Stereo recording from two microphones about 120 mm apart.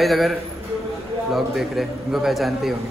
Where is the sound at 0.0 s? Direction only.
Centre (ahead or behind).